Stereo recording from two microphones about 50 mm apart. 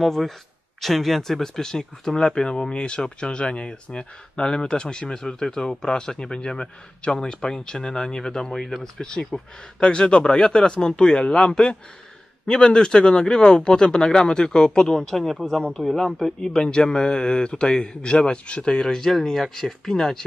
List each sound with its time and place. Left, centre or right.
0.0 s speech: centre